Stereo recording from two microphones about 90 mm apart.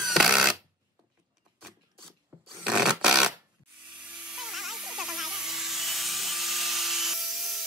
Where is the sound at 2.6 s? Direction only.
10° right (ahead or behind).